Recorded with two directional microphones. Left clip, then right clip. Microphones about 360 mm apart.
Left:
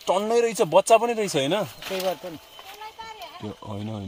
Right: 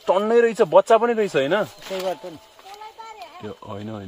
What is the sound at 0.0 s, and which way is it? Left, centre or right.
Speech, left.